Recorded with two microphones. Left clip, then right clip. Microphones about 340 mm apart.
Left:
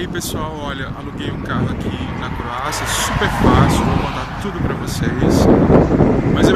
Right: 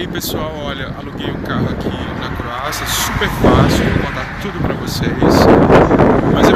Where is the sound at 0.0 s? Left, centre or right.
Centre.